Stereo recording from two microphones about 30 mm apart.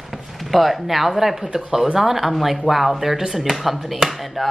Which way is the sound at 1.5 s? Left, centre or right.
Right.